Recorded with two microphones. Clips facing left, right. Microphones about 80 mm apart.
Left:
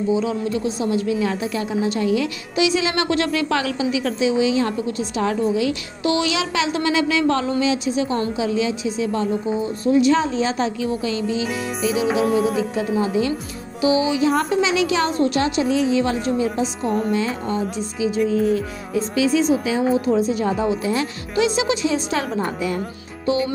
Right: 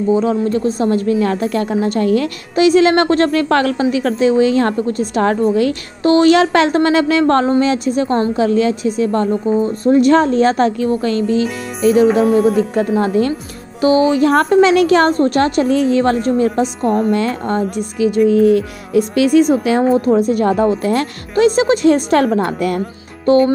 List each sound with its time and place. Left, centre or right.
0.1 s a woman's voice: right
12.3 s music: centre
12.9 s a woman's voice: right
23.2 s music: right